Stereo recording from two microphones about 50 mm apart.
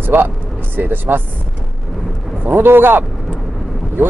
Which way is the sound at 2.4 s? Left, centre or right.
Right.